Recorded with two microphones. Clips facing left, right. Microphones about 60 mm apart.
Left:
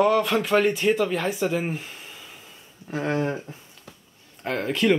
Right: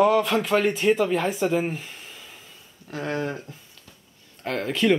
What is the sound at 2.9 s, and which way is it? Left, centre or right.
Speech, centre.